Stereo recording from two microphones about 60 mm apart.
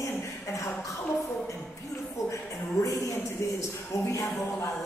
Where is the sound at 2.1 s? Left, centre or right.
Left.